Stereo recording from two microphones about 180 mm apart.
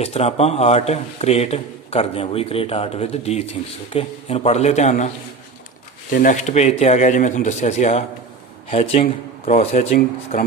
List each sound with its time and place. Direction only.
0.0 s speech: 35° left (ahead or behind)